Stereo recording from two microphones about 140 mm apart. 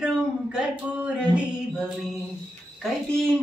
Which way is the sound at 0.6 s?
5° right (ahead or behind).